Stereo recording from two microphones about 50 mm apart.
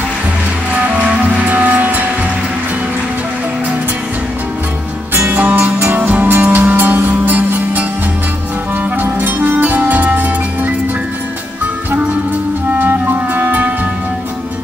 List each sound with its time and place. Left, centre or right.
1.0 s music: right
5.1 s music: right
8.9 s music: right
12.7 s music: right